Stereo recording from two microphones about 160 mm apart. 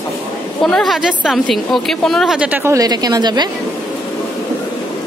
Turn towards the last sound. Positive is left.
turn(degrees=-25)  # may be behind; listen again after turning